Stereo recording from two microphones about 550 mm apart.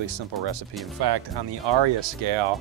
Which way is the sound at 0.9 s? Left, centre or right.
Right.